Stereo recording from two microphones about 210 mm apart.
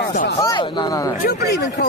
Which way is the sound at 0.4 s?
20° left (ahead or behind).